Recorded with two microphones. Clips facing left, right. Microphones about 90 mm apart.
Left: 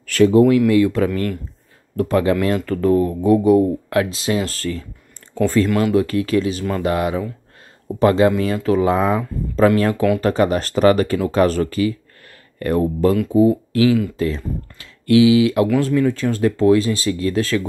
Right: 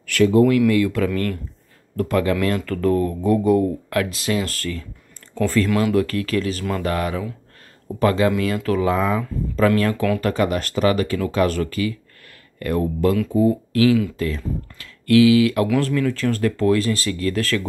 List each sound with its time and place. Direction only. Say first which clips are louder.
0.0 s a sound: left 3 dB; 35° left (ahead or behind)
0.3 s speech: left 2 dB; 20° left (ahead or behind)
13.1 s speech: left 4 dB; 10° left (ahead or behind)